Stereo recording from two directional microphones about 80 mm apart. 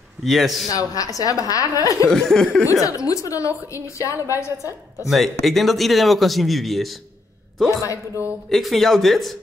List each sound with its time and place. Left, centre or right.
0.2 s speech: centre
0.7 s a woman's voice: left
2.0 s chuckle: centre
2.7 s a woman's voice: left
5.1 s speech: centre
8.5 s speech: centre